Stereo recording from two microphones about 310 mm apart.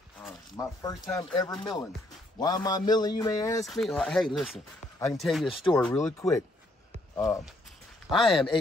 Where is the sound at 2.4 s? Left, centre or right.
Centre.